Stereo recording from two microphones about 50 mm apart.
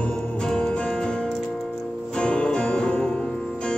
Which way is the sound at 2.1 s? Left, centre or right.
Centre.